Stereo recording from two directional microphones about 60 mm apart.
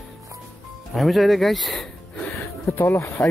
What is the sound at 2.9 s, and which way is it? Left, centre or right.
Speech, left.